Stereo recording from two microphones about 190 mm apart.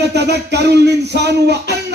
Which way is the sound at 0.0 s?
60° right (ahead or behind).